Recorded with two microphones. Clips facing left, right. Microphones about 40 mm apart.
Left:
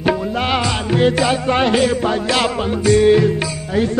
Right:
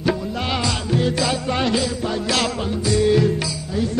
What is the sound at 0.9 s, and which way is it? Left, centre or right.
Music, left.